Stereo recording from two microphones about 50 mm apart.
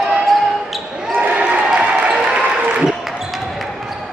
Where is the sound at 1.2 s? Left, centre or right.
Right.